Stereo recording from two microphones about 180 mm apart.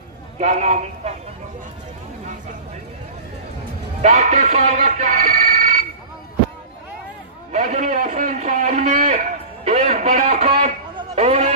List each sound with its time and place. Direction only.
0.4 s a man's voice: 40° right (ahead or behind)
4.0 s speech: 40° right (ahead or behind)
7.5 s a man's voice: 45° right (ahead or behind)